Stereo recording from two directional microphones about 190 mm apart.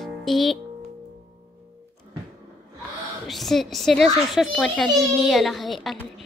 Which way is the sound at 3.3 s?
Centre (ahead or behind).